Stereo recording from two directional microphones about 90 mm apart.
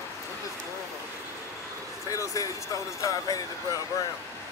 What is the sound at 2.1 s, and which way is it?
Speech, 40° left (ahead or behind).